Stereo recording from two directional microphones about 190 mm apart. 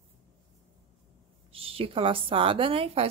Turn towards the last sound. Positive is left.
turn(degrees=-30)  # may be behind; listen again after turning